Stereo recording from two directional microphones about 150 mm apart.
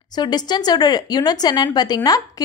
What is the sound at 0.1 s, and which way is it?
Speech, 25° left (ahead or behind).